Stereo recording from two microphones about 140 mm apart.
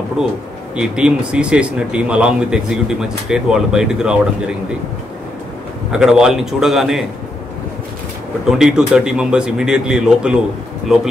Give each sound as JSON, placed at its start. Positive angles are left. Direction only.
{"t": 0.2, "sound": "a man's voice", "side_deg": -5}
{"t": 5.9, "sound": "a man's voice", "side_deg": -5}
{"t": 8.5, "sound": "a man's voice", "side_deg": -5}